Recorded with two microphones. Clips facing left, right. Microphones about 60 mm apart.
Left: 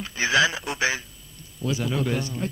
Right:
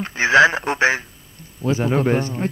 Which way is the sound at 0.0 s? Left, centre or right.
Right.